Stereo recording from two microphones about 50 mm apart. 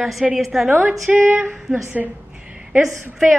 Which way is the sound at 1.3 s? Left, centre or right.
Right.